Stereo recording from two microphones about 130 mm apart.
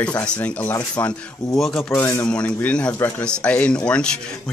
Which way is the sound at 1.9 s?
20° left (ahead or behind).